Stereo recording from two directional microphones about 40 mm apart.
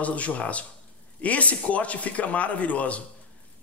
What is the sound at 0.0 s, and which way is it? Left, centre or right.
A man's voice, left.